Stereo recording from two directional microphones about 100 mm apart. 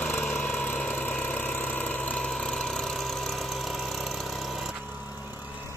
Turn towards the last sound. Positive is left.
turn(degrees=0)  # may be behind; listen again after turning